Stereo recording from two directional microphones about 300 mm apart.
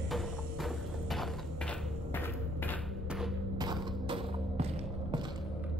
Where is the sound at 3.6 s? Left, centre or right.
Centre.